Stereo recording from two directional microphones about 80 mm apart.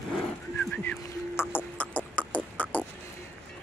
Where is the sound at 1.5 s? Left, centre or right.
Left.